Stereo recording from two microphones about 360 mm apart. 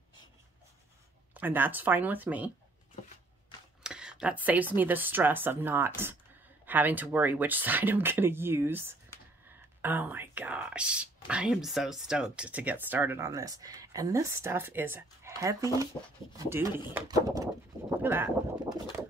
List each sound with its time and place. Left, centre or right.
1.3 s speech: centre
3.8 s speech: centre